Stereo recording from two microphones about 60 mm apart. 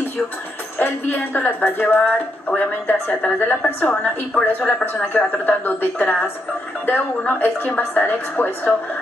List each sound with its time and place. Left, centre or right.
0.7 s a woman's voice: left
3.1 s a woman's voice: left
3.3 s a woman's voice: left